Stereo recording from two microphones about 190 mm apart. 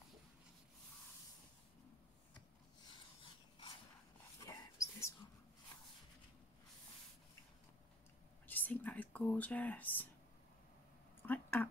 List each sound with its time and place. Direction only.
4.4 s dog: 15° left (ahead or behind)
8.5 s speech: 10° left (ahead or behind)
11.2 s a sound: 10° left (ahead or behind)